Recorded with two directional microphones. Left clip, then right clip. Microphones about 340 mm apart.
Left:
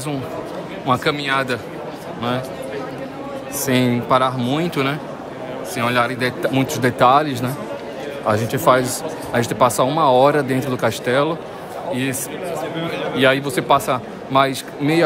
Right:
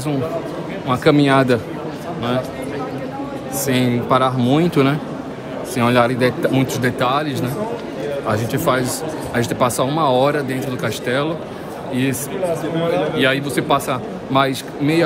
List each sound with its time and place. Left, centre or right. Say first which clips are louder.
0.8 s a man's voice: right 2 dB; centre
1.1 s speech: right 6 dB; centre
3.6 s a man's voice: even; centre
13.2 s a man's voice: left 1 dB; centre